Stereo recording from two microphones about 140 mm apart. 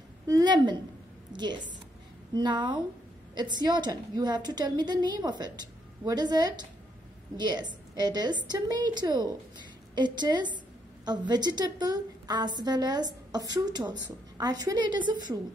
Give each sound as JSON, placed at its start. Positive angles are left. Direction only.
{"t": 0.3, "sound": "a woman's voice", "side_deg": -30}